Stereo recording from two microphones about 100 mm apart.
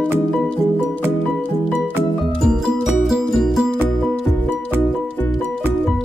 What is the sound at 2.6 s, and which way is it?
Music, 5° right (ahead or behind).